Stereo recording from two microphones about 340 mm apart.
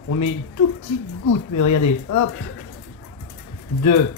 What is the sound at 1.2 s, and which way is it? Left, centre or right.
Speech, left.